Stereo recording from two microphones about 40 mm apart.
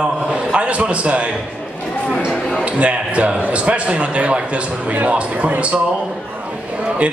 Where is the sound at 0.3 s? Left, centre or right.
Right.